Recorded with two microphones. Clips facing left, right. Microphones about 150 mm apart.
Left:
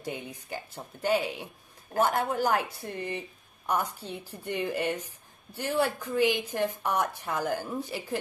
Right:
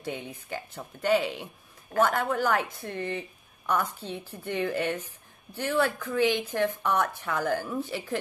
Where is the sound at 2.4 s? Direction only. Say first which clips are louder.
Even; 10° left (ahead or behind).